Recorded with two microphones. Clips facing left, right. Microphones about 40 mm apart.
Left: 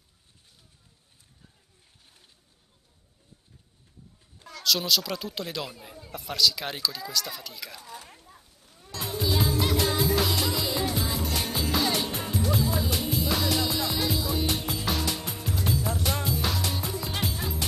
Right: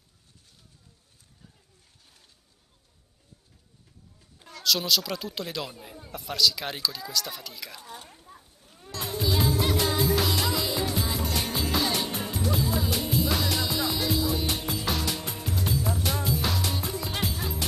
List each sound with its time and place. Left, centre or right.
4.4 s speech: centre
8.3 s a sound: centre
8.9 s music: centre